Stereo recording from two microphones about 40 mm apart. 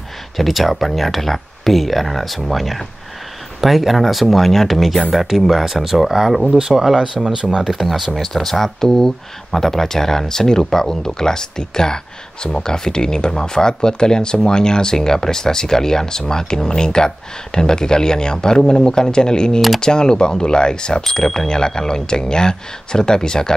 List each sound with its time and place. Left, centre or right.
0.4 s speech: centre
7.8 s speech: centre